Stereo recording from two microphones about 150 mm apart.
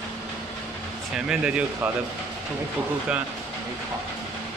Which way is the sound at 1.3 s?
10° right (ahead or behind).